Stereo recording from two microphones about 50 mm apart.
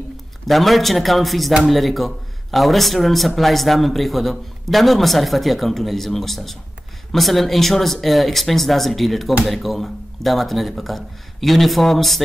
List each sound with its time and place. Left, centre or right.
0.5 s speech: centre